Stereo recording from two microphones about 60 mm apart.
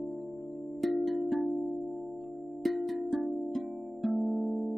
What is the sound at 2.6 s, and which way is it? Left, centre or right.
Music, centre.